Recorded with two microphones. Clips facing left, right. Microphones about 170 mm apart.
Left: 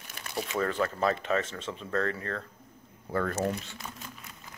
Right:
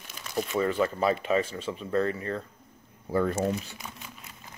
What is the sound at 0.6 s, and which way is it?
Speech, 5° right (ahead or behind).